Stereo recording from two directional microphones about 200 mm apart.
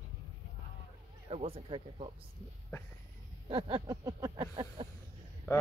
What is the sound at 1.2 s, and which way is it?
Speech, 30° right (ahead or behind).